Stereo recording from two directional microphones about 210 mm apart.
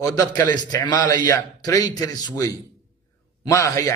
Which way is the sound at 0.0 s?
15° left (ahead or behind).